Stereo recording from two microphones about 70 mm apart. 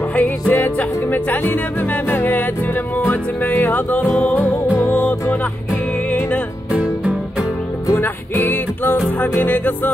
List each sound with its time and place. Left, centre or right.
0.1 s music: left
6.7 s music: centre
7.9 s music: left